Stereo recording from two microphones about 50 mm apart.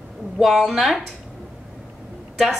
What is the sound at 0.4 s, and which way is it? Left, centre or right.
Speech, centre.